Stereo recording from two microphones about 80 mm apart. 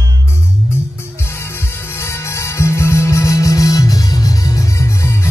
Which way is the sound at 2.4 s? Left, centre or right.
Left.